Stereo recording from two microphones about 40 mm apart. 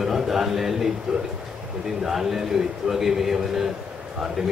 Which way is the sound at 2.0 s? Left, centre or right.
Centre.